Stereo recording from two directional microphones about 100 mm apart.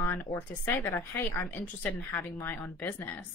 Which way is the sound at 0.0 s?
25° left (ahead or behind).